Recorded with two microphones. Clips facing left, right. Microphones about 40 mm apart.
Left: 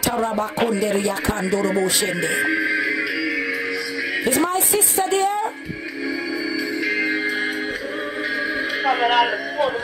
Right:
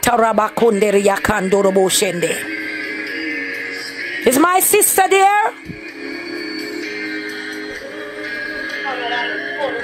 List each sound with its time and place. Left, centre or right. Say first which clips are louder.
0.0 s speech: right 8 dB; right
4.2 s speech: right 9 dB; right
8.8 s speech: left 5 dB; centre
9.2 s speech: left 1 dB; centre